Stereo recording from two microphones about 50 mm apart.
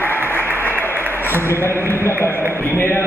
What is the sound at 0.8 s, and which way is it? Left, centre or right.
Applause, right.